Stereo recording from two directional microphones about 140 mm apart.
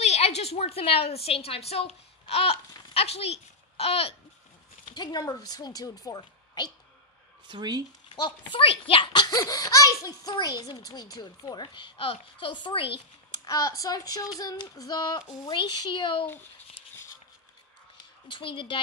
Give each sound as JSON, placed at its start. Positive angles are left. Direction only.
{"t": 0.0, "sound": "a woman's voice", "side_deg": 50}
{"t": 4.8, "sound": "speech", "side_deg": 30}
{"t": 7.4, "sound": "speech", "side_deg": -30}
{"t": 8.1, "sound": "a child's voice", "side_deg": 35}
{"t": 18.3, "sound": "a child's voice", "side_deg": 35}